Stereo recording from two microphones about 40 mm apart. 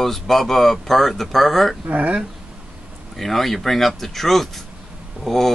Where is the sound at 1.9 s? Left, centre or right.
Right.